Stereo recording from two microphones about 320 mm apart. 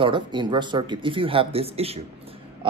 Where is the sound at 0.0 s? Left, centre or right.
Centre.